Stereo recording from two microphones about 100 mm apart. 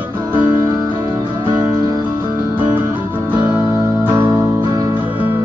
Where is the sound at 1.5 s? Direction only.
40° right (ahead or behind).